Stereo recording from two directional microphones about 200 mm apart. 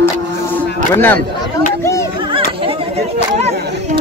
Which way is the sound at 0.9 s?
10° left (ahead or behind).